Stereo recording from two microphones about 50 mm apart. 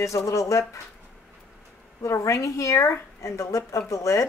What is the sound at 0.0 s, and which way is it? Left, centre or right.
Speech, left.